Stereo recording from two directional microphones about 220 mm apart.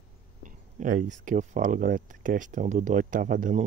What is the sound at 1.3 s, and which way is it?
Speech, 35° right (ahead or behind).